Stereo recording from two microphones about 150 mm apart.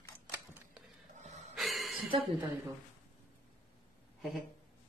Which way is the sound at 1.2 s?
50° right (ahead or behind).